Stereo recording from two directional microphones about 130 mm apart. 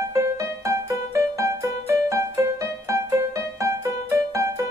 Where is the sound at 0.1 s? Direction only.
25° right (ahead or behind).